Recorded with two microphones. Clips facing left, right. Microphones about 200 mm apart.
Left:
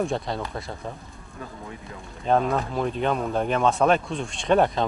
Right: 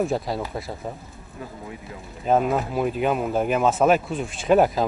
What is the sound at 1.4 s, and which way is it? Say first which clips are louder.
Speech: right 2 dB; 15° right (ahead or behind).